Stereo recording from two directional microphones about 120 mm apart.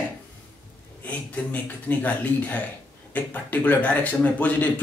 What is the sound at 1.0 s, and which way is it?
Speech, 10° left (ahead or behind).